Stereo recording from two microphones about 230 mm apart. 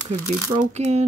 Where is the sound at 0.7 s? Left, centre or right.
Right.